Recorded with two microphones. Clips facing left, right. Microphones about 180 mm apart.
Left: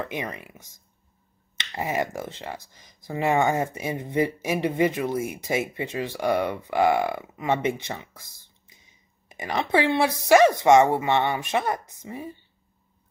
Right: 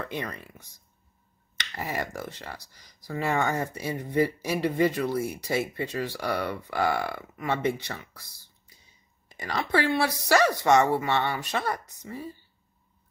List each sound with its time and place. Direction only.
0.0 s speech: 15° left (ahead or behind)